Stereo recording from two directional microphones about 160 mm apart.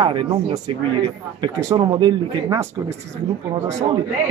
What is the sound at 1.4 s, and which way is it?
Speech, 20° right (ahead or behind).